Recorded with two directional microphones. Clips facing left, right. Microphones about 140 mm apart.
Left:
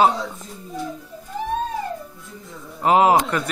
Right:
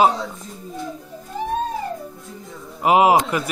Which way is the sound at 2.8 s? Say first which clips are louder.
Right 1 dB; 10° right (ahead or behind).